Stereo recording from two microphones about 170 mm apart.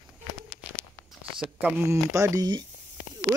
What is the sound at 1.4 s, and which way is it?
Speech, 5° right (ahead or behind).